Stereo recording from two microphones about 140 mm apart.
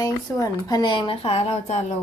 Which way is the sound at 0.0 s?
30° left (ahead or behind).